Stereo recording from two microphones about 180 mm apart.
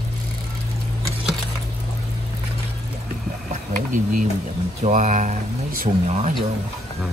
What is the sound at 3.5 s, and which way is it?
Boiling, 45° right (ahead or behind).